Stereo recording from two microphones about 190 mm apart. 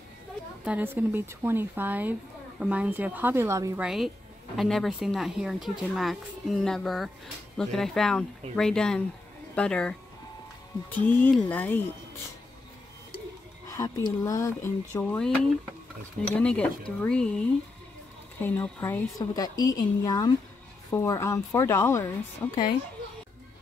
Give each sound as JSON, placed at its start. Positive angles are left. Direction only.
{"t": 0.7, "sound": "speech", "side_deg": -10}
{"t": 3.8, "sound": "speech", "side_deg": 0}
{"t": 11.0, "sound": "speech", "side_deg": 10}
{"t": 13.7, "sound": "speech", "side_deg": 20}
{"t": 15.1, "sound": "speech", "side_deg": 5}